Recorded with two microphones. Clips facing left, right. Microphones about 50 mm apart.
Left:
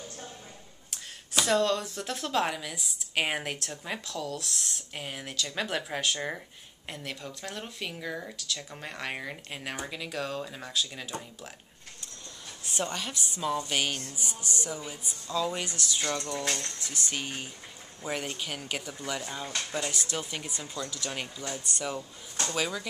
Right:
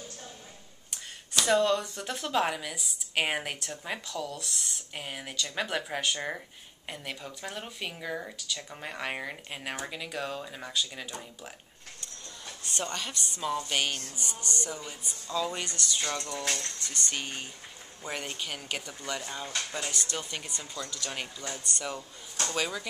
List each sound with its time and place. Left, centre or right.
1.4 s speech: centre
12.6 s a woman's voice: centre
15.2 s speech: centre
16.4 s speech: left
16.8 s speech: centre